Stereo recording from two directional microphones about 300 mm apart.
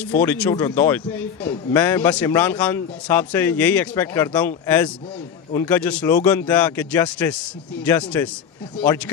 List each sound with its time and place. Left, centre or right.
0.0 s speech: centre